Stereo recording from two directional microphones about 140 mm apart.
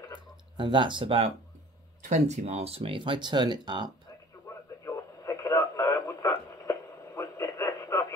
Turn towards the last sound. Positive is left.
turn(degrees=15)  # may be behind; listen again after turning